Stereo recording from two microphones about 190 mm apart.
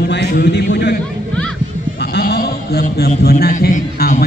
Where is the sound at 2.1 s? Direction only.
55° left (ahead or behind).